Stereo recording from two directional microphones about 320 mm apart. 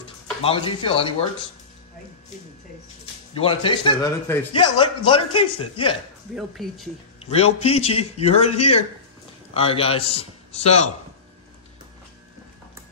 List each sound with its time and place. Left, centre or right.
0.4 s a man's voice: centre
3.3 s a man's voice: centre
6.3 s speech: centre
7.2 s a man's voice: centre
9.5 s a man's voice: centre